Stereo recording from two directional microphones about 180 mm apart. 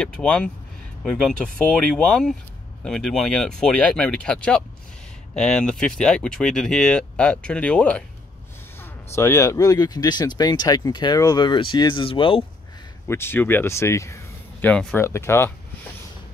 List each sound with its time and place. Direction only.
0.0 s speech: 5° left (ahead or behind); by 12.4 s 30° left (ahead or behind)
13.1 s speech: 10° left (ahead or behind)